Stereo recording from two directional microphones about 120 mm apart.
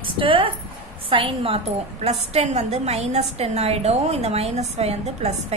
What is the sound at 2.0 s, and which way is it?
A woman's voice, 65° right (ahead or behind).